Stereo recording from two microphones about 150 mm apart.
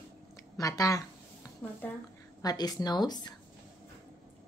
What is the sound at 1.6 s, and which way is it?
Speech, 10° left (ahead or behind).